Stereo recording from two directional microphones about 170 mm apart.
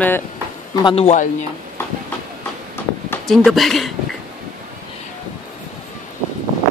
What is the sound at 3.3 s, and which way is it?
Speech, centre (ahead or behind).